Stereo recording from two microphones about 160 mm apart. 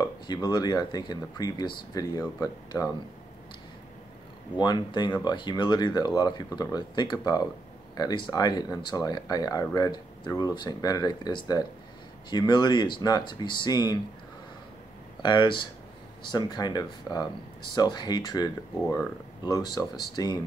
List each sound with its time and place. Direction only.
0.3 s speech: 25° left (ahead or behind)
4.6 s speech: 25° left (ahead or behind)
15.2 s speech: 30° left (ahead or behind)